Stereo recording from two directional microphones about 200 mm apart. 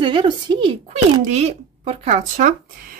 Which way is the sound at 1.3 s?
35° right (ahead or behind).